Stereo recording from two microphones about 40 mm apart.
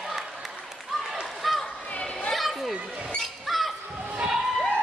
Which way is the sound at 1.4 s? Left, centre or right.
Centre.